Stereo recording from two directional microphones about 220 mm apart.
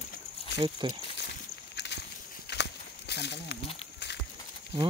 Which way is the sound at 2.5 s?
50° left (ahead or behind).